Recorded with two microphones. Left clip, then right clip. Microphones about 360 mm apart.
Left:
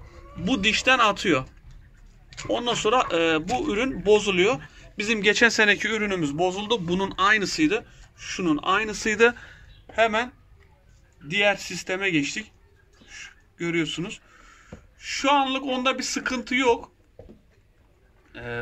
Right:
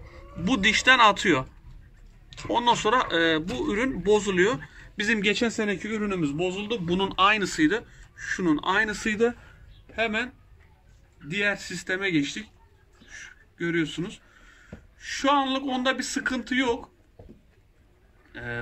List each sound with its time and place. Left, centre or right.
0.0 s speech: centre
5.3 s a man's voice: left
6.9 s speech: centre
9.0 s a man's voice: centre
11.2 s speech: centre
18.3 s speech: centre